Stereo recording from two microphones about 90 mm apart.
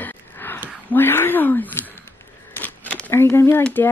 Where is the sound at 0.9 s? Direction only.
25° left (ahead or behind).